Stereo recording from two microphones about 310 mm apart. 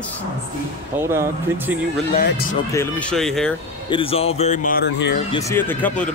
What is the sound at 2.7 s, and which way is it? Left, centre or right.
Speech, centre.